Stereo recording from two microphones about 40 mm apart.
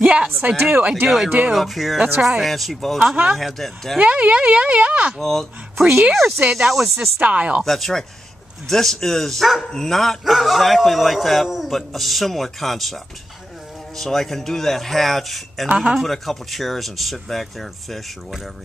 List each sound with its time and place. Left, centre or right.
0.0 s a sound: right
0.6 s speech: right
1.0 s a man's voice: centre
4.0 s speech: right
5.2 s a man's voice: centre
5.8 s speech: centre
6.1 s a man's voice: centre
7.2 s speech: right
7.6 s a man's voice: centre